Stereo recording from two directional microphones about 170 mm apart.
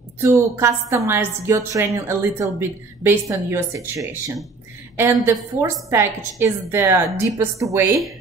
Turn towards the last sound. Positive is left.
turn(degrees=-20)  # may be behind; listen again after turning